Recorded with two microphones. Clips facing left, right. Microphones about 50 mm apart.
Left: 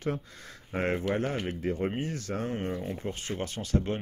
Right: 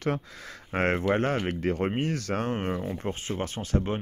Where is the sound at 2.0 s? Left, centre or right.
Right.